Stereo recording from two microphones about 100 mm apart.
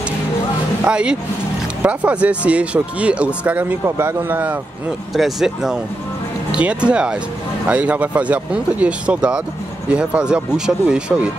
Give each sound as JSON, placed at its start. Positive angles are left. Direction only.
{"t": 0.8, "sound": "speech", "side_deg": -10}
{"t": 3.8, "sound": "a man's voice", "side_deg": -25}
{"t": 5.1, "sound": "speech", "side_deg": -5}